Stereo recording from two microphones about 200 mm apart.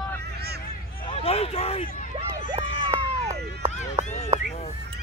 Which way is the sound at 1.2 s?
30° left (ahead or behind).